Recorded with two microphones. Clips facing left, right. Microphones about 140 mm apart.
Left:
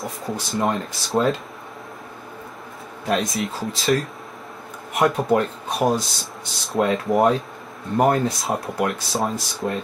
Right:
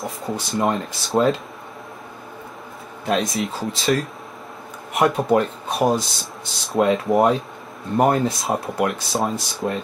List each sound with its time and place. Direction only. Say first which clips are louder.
0.0 s speech: right 1 dB; centre (ahead or behind)
3.1 s speech: right 1 dB; centre (ahead or behind)